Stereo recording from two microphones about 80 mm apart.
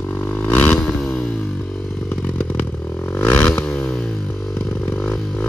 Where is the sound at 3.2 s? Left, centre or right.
Left.